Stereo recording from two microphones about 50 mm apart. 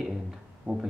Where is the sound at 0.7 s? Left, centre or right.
Right.